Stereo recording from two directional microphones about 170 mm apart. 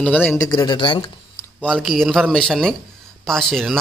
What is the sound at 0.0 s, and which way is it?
Speech, 10° left (ahead or behind).